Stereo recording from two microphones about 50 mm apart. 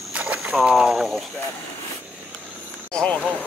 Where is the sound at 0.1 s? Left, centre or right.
Right.